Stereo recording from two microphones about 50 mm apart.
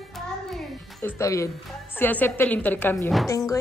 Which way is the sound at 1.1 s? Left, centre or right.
Left.